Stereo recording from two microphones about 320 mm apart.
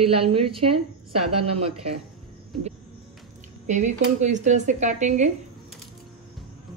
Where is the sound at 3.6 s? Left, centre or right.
Right.